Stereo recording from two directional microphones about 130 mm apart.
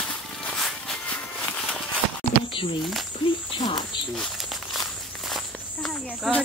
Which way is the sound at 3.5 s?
40° left (ahead or behind).